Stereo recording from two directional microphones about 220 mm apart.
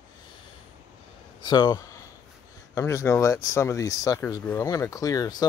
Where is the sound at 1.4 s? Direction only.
20° left (ahead or behind).